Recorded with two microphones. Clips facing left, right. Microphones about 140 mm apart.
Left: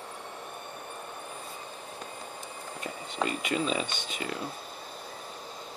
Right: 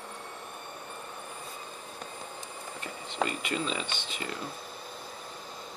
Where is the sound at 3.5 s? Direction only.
20° left (ahead or behind).